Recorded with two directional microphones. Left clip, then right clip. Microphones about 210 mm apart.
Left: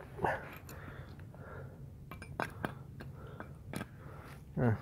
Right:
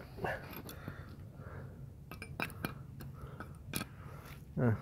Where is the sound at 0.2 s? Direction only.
20° left (ahead or behind).